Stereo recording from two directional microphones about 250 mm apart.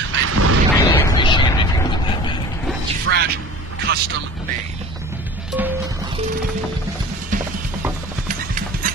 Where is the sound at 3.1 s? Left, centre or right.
Right.